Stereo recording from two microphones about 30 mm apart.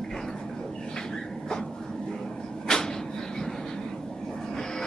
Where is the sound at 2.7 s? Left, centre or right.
Centre.